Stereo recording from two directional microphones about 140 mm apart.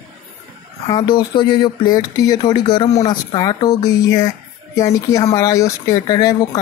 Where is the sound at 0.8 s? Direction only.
35° left (ahead or behind).